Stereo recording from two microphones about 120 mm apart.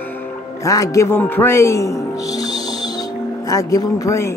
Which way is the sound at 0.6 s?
30° left (ahead or behind).